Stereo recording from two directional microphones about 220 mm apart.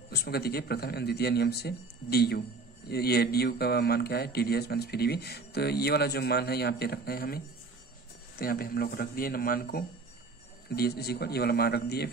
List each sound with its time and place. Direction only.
0.1 s speech: 45° left (ahead or behind)